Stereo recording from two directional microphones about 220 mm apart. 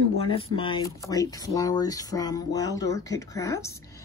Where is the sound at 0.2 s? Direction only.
25° left (ahead or behind).